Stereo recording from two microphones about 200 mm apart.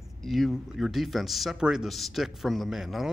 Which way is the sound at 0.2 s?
Centre (ahead or behind).